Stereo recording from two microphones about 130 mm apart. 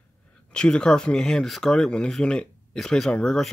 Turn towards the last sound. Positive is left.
turn(degrees=5)  # may be behind; listen again after turning